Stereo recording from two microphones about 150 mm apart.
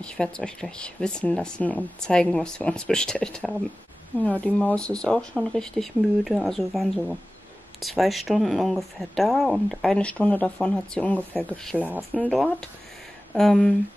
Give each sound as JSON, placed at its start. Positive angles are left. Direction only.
{"t": 0.0, "sound": "speech", "side_deg": 5}
{"t": 11.8, "sound": "speech", "side_deg": -10}
{"t": 12.3, "sound": "speech", "side_deg": 0}